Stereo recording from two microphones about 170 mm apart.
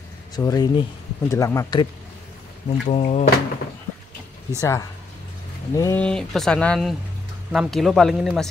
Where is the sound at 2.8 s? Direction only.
40° left (ahead or behind).